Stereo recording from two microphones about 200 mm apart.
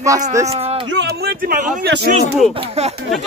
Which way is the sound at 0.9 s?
60° right (ahead or behind).